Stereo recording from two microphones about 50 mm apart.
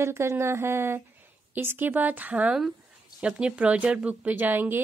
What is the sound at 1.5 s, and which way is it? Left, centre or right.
Speech, right.